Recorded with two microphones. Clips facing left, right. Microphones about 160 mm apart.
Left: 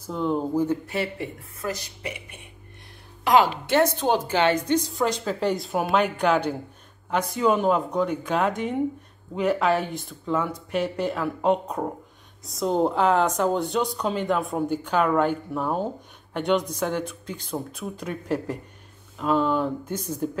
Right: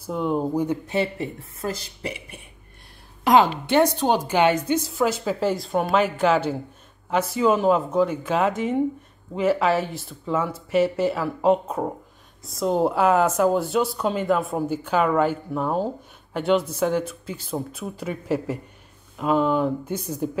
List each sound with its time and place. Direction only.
0.0 s a woman's voice: 10° right (ahead or behind); by 2.1 s 30° right (ahead or behind)
3.3 s speech: 15° right (ahead or behind)